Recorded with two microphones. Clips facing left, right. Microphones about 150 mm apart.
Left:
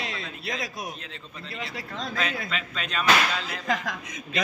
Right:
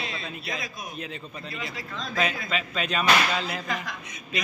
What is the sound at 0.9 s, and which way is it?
Speech, 10° right (ahead or behind).